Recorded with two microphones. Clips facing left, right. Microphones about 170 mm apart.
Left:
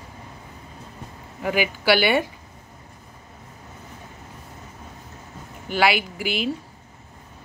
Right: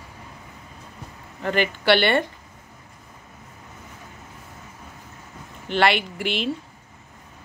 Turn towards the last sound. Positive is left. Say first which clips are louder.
# even
turn(degrees=5)  # may be behind; listen again after turning